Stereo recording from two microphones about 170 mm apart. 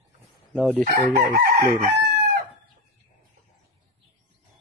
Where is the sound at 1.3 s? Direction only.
60° right (ahead or behind).